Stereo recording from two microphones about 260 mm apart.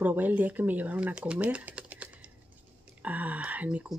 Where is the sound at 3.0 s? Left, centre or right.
Centre.